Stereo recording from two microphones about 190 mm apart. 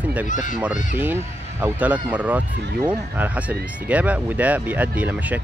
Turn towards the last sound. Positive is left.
turn(degrees=-10)  # may be behind; listen again after turning